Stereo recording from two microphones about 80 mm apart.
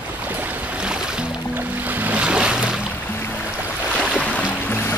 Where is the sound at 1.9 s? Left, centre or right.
Right.